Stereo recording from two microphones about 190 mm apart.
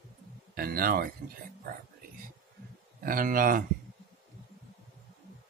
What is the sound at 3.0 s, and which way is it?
Speech, 45° right (ahead or behind).